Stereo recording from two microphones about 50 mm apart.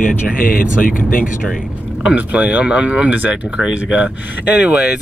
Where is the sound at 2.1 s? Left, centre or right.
Right.